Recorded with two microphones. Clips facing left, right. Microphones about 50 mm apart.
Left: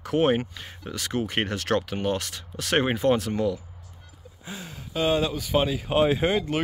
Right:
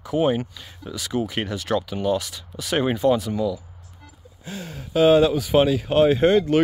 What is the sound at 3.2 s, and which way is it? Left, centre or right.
Speech, left.